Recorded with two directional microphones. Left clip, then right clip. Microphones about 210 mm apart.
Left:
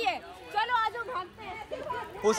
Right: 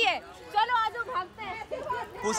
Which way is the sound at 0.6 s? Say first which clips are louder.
Right 2 dB; centre (ahead or behind).